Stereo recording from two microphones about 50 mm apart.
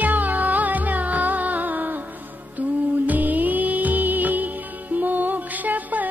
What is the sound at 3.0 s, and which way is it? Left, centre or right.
Music, right.